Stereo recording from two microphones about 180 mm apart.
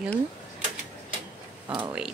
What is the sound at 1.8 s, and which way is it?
Speech, 5° right (ahead or behind).